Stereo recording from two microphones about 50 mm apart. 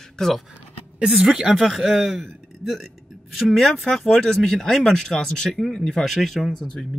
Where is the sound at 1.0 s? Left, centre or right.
Centre.